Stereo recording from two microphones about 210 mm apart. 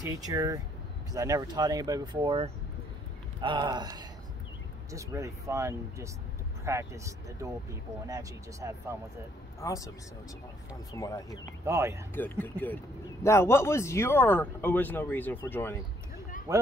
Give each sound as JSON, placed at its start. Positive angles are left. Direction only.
{"t": 0.0, "sound": "speech", "side_deg": -15}
{"t": 9.6, "sound": "a man's voice", "side_deg": 15}
{"t": 10.9, "sound": "a man's voice", "side_deg": 15}
{"t": 11.6, "sound": "speech", "side_deg": -15}
{"t": 12.1, "sound": "a man's voice", "side_deg": 10}
{"t": 16.5, "sound": "speech", "side_deg": -15}